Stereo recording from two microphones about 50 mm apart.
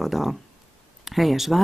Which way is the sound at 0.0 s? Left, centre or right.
Centre.